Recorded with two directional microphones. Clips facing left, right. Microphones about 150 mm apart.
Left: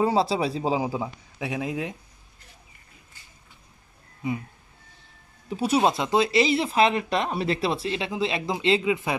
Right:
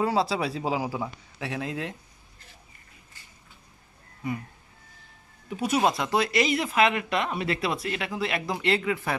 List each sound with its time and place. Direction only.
0.0 s speech: 25° left (ahead or behind)
5.5 s speech: 30° left (ahead or behind)